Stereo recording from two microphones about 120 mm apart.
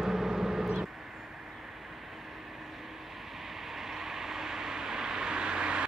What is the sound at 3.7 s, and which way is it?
Vehicle, 5° right (ahead or behind).